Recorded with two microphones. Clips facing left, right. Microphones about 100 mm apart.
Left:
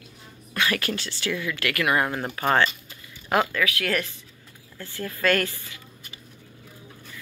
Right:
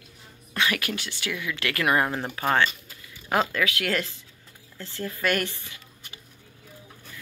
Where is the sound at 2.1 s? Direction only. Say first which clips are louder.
Left 1 dB; 10° right (ahead or behind).